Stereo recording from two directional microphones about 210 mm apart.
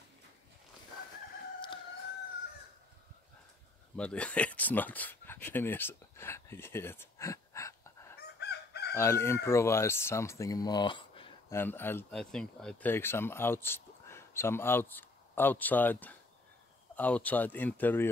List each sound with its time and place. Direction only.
3.9 s speech: 5° left (ahead or behind)
8.2 s chicken: 50° left (ahead or behind)
8.9 s speech: 10° left (ahead or behind)
11.5 s speech: 10° left (ahead or behind)